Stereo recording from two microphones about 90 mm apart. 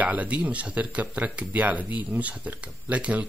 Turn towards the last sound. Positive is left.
turn(degrees=-15)  # may be behind; listen again after turning